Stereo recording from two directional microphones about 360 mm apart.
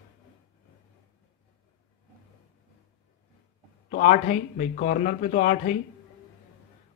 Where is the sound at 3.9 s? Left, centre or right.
Centre.